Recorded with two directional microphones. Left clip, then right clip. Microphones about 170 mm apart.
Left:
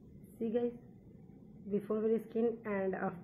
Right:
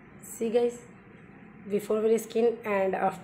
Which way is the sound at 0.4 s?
15° right (ahead or behind).